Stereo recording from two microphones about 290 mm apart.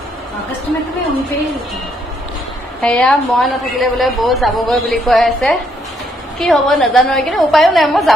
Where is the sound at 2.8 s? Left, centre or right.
Centre.